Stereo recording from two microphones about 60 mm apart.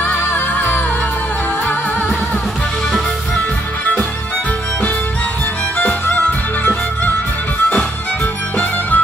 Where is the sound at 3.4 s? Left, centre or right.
Left.